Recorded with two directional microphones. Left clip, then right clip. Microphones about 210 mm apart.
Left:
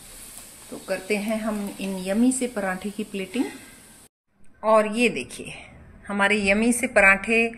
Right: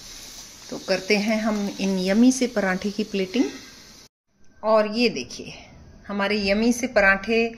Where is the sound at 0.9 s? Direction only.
40° right (ahead or behind).